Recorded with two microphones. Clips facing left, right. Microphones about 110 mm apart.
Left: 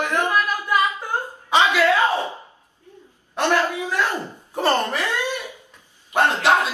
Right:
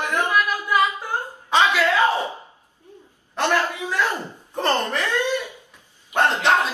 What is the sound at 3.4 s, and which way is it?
A man's voice, 15° left (ahead or behind).